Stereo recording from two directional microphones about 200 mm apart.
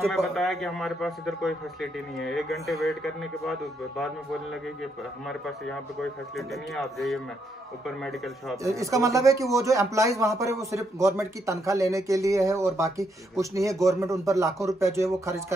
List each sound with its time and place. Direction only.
0.1 s a man's voice: centre (ahead or behind)
5.7 s a man's voice: centre (ahead or behind)
8.6 s speech: 15° right (ahead or behind)